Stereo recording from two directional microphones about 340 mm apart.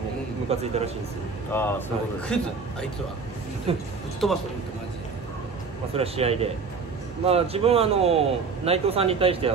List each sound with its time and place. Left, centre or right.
0.5 s a man's voice: centre
1.5 s a man's voice: centre
4.2 s a man's voice: centre
5.9 s a man's voice: centre